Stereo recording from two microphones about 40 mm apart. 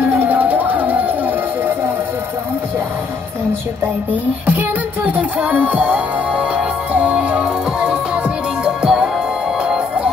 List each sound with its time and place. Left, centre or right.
0.0 s music: right
4.1 s music: right